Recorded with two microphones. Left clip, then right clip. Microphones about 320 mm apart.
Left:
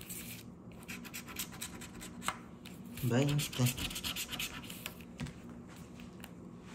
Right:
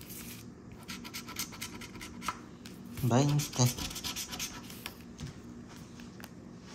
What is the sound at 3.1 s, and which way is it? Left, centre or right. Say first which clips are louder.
Speech: right 4 dB; centre.